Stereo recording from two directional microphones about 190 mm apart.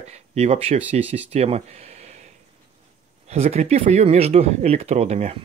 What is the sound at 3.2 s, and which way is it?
Speech, 35° right (ahead or behind).